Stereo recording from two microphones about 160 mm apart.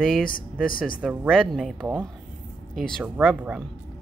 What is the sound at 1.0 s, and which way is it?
Speech, 5° right (ahead or behind).